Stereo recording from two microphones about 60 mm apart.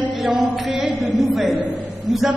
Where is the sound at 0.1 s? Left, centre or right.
Centre.